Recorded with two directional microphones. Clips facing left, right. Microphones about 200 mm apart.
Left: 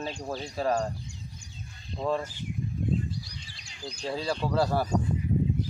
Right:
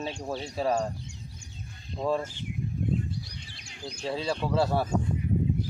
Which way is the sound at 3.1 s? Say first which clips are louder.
Even; 60° right (ahead or behind).